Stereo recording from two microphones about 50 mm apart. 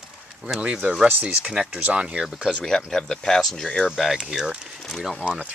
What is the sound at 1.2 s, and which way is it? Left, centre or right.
Speech, centre.